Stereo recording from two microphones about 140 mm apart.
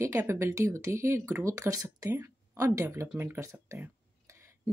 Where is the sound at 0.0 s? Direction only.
20° right (ahead or behind).